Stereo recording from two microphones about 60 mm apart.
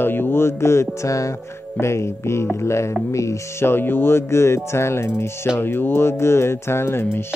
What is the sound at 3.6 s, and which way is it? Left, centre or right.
Speech, left.